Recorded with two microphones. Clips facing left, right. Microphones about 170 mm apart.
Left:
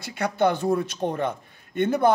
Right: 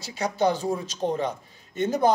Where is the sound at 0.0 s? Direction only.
60° left (ahead or behind).